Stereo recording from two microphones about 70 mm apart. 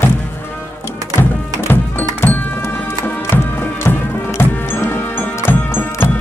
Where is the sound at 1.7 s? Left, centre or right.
Left.